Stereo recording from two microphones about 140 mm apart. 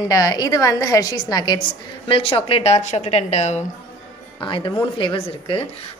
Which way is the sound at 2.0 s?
40° left (ahead or behind).